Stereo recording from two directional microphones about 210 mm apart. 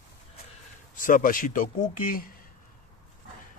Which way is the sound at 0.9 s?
40° left (ahead or behind).